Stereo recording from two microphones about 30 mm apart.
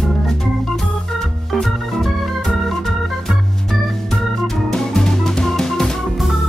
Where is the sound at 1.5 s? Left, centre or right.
Centre.